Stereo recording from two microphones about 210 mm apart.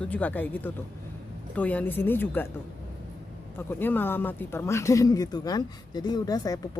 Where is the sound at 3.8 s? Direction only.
10° left (ahead or behind).